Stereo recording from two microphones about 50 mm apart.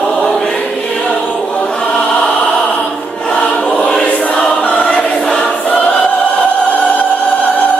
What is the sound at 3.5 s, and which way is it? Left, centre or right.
Choir, left.